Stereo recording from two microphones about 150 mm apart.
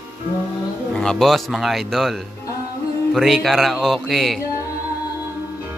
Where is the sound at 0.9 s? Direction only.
5° left (ahead or behind).